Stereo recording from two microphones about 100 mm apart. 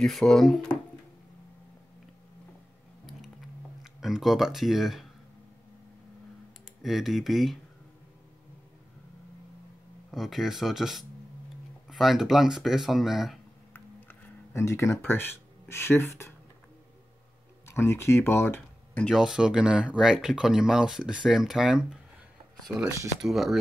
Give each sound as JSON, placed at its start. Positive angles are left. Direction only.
{"t": 0.0, "sound": "speech", "side_deg": 5}
{"t": 3.1, "sound": "a sound", "side_deg": 0}
{"t": 6.8, "sound": "speech", "side_deg": 0}
{"t": 10.1, "sound": "speech", "side_deg": -5}
{"t": 14.5, "sound": "speech", "side_deg": 30}
{"t": 17.6, "sound": "speech", "side_deg": 25}
{"t": 19.1, "sound": "speech", "side_deg": -5}
{"t": 23.2, "sound": "speech", "side_deg": 0}